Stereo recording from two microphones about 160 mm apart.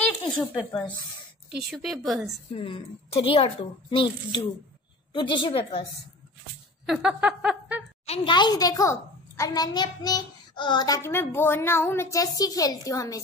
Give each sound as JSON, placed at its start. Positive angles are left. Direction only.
{"t": 0.0, "sound": "a woman's voice", "side_deg": 0}
{"t": 2.5, "sound": "a woman's voice", "side_deg": 35}
{"t": 6.9, "sound": "a sound", "side_deg": -5}
{"t": 8.1, "sound": "a woman's voice", "side_deg": 35}
{"t": 11.0, "sound": "a woman's voice", "side_deg": 15}